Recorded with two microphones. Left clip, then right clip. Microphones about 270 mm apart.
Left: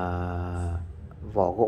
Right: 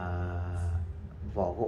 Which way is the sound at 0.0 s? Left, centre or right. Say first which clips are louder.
Left 7 dB; left.